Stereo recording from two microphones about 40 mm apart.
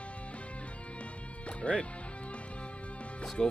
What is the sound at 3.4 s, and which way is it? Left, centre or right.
Music, centre.